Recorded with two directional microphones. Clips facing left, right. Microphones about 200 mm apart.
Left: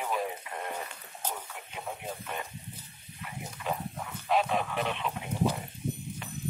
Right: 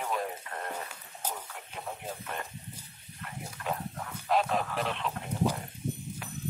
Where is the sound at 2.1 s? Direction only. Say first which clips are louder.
Left 1 dB; centre (ahead or behind).